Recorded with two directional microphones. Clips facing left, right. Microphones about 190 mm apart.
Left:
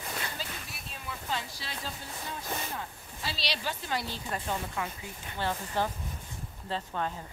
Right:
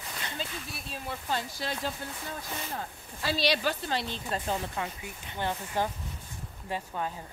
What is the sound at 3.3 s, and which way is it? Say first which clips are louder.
Speech: right 9 dB; 50° right (ahead or behind).